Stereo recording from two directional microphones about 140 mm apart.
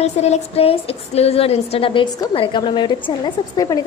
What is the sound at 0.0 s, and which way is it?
A woman's voice, 50° left (ahead or behind).